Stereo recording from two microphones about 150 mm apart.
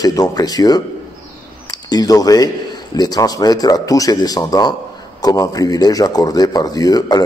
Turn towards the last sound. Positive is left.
turn(degrees=25)  # may be behind; listen again after turning